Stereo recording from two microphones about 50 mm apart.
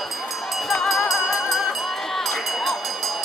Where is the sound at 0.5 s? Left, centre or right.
Centre.